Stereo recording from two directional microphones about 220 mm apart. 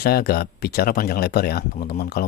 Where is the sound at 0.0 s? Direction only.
45° left (ahead or behind).